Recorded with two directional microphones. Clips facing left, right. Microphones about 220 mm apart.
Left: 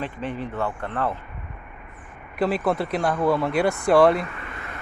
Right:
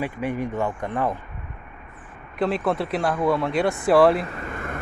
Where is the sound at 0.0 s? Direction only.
10° right (ahead or behind).